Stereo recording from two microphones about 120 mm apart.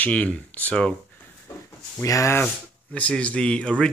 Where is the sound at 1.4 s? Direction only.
25° left (ahead or behind).